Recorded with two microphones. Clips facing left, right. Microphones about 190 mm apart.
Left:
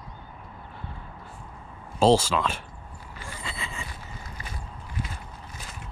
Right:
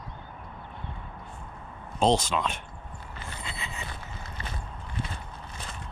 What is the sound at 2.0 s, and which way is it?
Speech, 5° left (ahead or behind).